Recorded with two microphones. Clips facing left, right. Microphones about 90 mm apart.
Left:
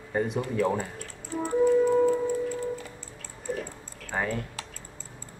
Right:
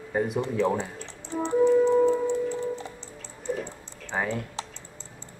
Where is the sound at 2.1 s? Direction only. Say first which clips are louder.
Right 1 dB; 25° right (ahead or behind).